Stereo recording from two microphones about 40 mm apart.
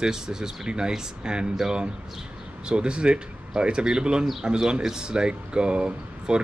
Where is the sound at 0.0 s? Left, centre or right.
Centre.